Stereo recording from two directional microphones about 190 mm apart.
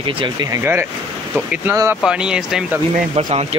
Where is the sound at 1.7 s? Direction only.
15° right (ahead or behind).